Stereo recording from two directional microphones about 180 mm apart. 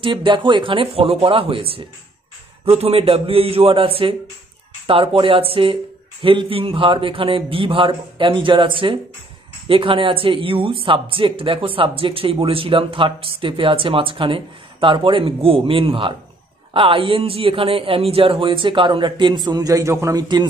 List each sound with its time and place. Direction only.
0.0 s a man's voice: 25° right (ahead or behind)